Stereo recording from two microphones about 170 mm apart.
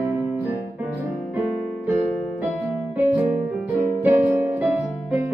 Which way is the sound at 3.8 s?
10° right (ahead or behind).